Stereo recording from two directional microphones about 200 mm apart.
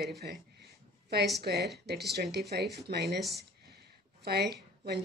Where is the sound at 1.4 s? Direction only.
50° right (ahead or behind).